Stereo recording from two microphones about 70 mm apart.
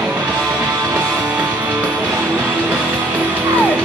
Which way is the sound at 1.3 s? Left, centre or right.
Right.